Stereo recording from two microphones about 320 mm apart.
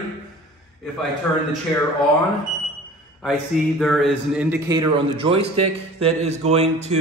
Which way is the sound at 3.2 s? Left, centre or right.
Centre.